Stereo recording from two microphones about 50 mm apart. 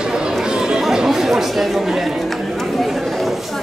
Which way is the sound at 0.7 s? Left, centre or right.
Centre.